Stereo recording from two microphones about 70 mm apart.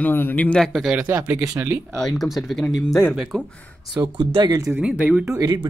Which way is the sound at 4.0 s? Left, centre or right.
Right.